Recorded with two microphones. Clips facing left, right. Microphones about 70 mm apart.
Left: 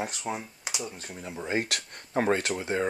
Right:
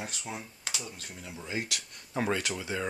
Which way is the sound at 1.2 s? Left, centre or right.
Left.